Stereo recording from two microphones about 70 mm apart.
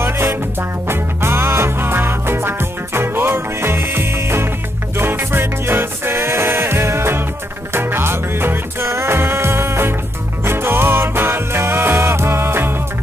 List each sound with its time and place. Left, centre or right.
0.0 s music: right